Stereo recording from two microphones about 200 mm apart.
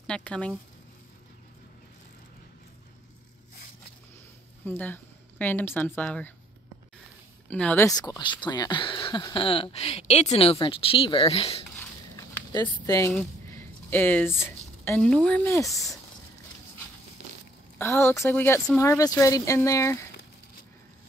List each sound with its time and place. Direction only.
0.0 s speech: 5° left (ahead or behind)
4.6 s speech: 10° left (ahead or behind)
7.4 s speech: 5° left (ahead or behind); by 11.6 s 30° left (ahead or behind)
12.2 s a sound: 20° left (ahead or behind)
15.0 s speech: 5° left (ahead or behind)
17.7 s speech: 10° left (ahead or behind)